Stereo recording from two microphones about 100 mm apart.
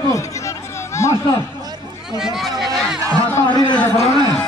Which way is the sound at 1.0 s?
30° left (ahead or behind).